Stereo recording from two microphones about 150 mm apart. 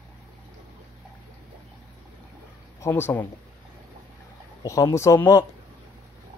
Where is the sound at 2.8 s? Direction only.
15° left (ahead or behind).